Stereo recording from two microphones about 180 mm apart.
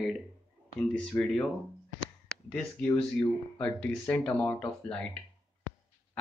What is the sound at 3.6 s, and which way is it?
Speech, 10° left (ahead or behind).